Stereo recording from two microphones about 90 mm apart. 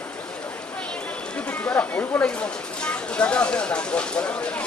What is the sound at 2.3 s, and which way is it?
Speech, 10° left (ahead or behind).